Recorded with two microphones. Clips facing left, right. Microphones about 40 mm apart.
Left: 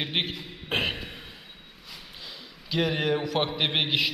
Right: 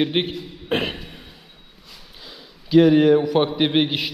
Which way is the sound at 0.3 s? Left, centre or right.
Centre.